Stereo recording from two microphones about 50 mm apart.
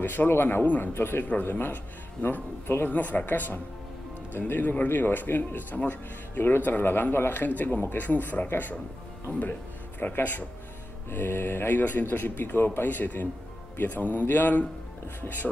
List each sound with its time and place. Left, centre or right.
0.0 s speech: left